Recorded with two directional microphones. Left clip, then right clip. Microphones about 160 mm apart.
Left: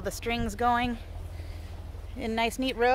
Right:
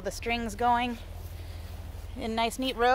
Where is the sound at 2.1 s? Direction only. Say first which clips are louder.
Left 1 dB; 10° left (ahead or behind).